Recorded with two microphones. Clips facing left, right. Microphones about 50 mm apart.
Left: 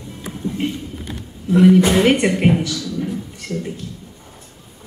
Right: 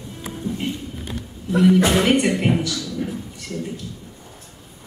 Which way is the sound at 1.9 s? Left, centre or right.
Centre.